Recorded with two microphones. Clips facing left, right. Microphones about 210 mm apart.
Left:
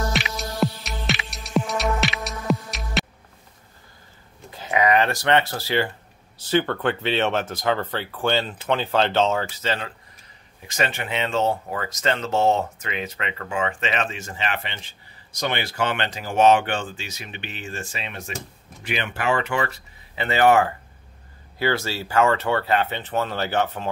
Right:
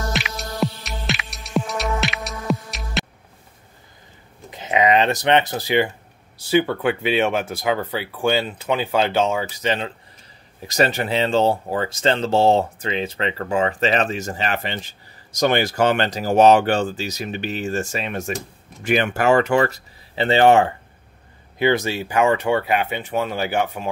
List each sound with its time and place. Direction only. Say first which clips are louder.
0.1 s music: even; centre (ahead or behind)
4.5 s speech: right 2 dB; 20° right (ahead or behind)
10.7 s speech: right 6 dB; 40° right (ahead or behind)
20.2 s speech: right 3 dB; 30° right (ahead or behind); by 23.9 s 10° right (ahead or behind)